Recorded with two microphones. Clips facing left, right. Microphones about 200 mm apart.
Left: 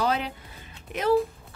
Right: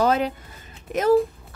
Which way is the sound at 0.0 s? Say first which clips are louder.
Right 6 dB; 45° right (ahead or behind).